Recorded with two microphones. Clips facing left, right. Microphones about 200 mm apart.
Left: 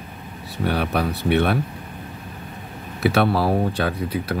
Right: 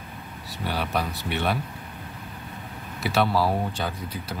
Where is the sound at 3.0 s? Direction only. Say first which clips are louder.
Left 4 dB; 60° left (ahead or behind).